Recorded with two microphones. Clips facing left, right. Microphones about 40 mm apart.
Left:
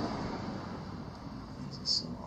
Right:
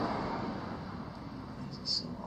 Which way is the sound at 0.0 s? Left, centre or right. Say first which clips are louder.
Right 2 dB; centre.